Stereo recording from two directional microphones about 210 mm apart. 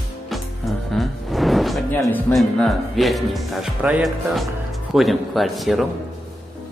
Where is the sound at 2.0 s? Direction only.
10° left (ahead or behind).